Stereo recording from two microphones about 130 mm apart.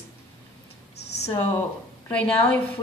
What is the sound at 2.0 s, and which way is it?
Speech, 10° left (ahead or behind).